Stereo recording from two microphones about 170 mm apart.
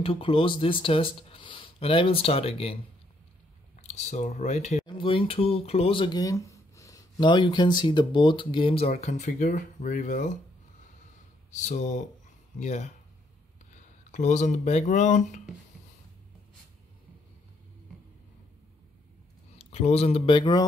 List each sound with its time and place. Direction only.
0.0 s speech: 30° left (ahead or behind)
3.8 s speech: 40° left (ahead or behind)
4.8 s speech: 30° left (ahead or behind); by 10.3 s 50° left (ahead or behind)
11.5 s speech: 45° left (ahead or behind)
14.1 s speech: 45° left (ahead or behind)
19.6 s speech: 40° left (ahead or behind)